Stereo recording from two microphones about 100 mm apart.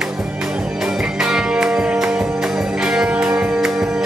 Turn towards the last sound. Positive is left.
turn(degrees=-5)  # may be behind; listen again after turning